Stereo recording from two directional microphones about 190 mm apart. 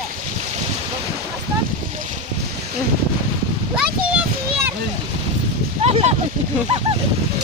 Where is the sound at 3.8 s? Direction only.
5° right (ahead or behind).